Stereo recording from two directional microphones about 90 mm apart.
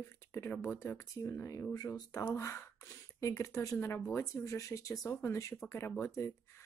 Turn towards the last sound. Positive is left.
turn(degrees=30)  # may be behind; listen again after turning